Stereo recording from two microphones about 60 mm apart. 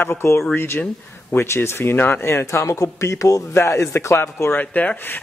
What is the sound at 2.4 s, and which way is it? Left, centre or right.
Speech, left.